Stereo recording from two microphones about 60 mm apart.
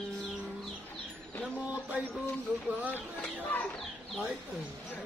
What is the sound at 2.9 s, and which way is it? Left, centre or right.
Speech, left.